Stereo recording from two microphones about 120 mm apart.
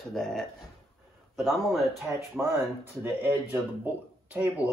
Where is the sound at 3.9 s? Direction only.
15° right (ahead or behind).